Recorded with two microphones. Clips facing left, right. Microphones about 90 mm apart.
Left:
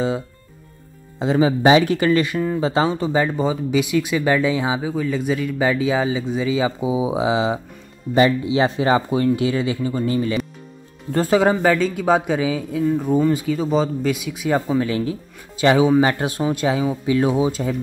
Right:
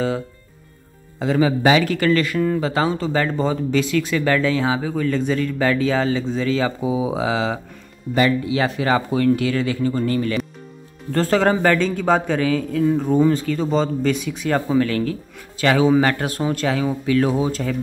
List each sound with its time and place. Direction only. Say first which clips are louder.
1.2 s speech: left 1 dB; 20° left (ahead or behind)